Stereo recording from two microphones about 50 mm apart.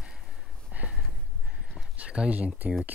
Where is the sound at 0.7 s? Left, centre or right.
Right.